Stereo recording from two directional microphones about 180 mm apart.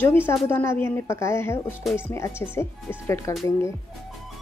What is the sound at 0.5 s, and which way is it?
A woman's voice, 10° left (ahead or behind).